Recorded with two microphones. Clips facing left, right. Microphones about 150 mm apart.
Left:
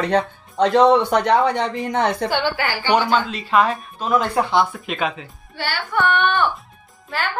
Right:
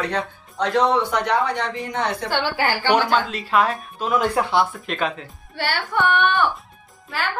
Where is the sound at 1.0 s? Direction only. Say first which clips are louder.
Left 4 dB; 60° left (ahead or behind).